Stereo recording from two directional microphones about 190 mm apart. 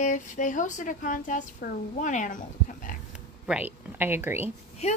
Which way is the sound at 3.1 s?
5° right (ahead or behind).